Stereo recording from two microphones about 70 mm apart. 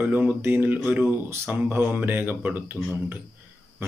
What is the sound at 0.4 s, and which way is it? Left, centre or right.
Speech, right.